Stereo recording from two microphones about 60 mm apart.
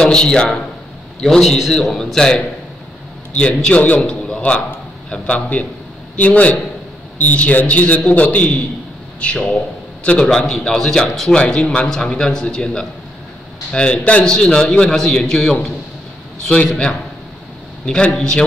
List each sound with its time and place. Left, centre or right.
0.0 s a man's voice: centre